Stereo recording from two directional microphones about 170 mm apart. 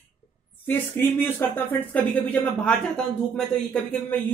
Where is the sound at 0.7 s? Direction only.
10° left (ahead or behind).